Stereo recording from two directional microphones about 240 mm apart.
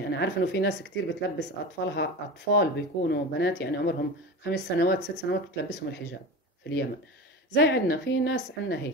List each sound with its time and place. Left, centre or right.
0.1 s speech: left